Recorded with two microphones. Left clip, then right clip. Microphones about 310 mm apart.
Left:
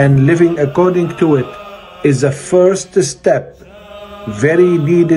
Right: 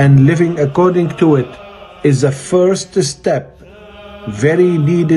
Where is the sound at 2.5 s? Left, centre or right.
Left.